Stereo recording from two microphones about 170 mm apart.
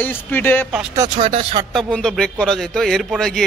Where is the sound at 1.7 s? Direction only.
5° left (ahead or behind).